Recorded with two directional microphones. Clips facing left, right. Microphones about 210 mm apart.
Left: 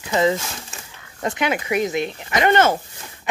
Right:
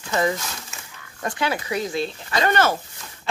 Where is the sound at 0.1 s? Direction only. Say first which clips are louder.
Left 4 dB; 20° left (ahead or behind).